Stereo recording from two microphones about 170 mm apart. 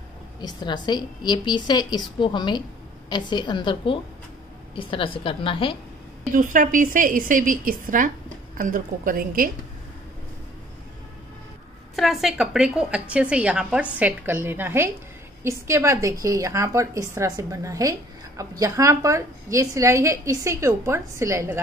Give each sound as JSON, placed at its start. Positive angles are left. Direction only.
{"t": 0.4, "sound": "a woman's voice", "side_deg": 25}
{"t": 6.3, "sound": "a woman's voice", "side_deg": -50}
{"t": 11.9, "sound": "a woman's voice", "side_deg": 0}